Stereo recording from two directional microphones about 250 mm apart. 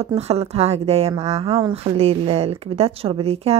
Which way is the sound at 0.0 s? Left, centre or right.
Right.